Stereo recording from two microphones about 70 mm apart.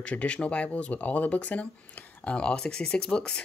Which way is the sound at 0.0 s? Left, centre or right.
Centre.